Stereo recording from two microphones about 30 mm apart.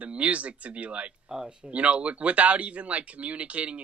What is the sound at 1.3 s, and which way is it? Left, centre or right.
Speech, right.